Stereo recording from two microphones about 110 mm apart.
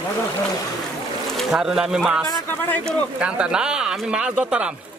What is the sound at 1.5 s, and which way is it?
Speech, 5° right (ahead or behind).